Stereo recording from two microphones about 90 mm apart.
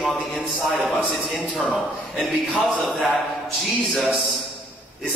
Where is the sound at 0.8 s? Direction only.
15° right (ahead or behind).